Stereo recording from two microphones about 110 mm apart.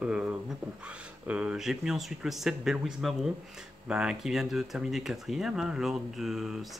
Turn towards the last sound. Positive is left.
turn(degrees=0)  # may be behind; listen again after turning